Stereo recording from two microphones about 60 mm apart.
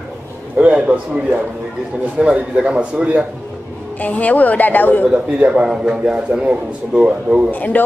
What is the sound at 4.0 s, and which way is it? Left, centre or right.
Speech, left.